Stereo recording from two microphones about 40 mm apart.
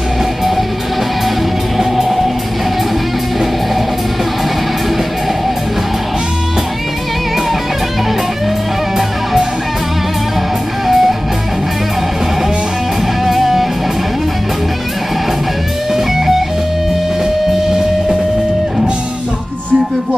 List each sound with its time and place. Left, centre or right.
1.8 s music: centre
8.9 s music: centre
10.9 s music: centre
13.2 s music: centre
15.9 s music: centre